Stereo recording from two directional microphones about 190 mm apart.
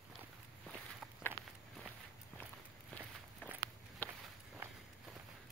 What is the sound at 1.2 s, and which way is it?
Walk, 10° left (ahead or behind).